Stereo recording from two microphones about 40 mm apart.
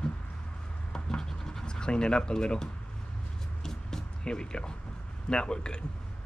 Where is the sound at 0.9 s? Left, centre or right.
Centre.